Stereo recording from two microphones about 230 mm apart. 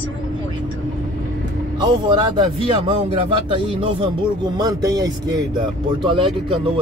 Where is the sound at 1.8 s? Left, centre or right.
Right.